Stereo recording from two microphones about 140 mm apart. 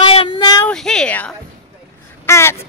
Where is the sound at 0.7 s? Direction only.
5° left (ahead or behind).